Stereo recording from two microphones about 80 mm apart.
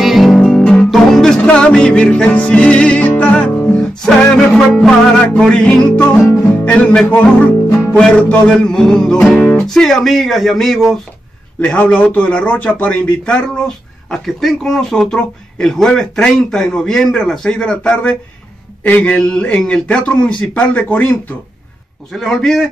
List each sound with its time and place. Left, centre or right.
0.0 s music: centre
0.4 s guitar: centre
0.8 s music: centre
3.7 s music: centre
4.4 s a man's voice: centre
6.3 s music: left
8.5 s a man's voice: centre
9.4 s music: left
9.7 s speech: centre
11.6 s a man's voice: centre
22.1 s speech: centre